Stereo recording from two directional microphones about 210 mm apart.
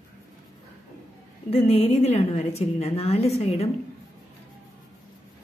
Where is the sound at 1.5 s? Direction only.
30° left (ahead or behind).